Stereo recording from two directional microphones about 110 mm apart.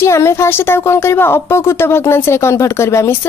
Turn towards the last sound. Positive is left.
turn(degrees=25)  # may be behind; listen again after turning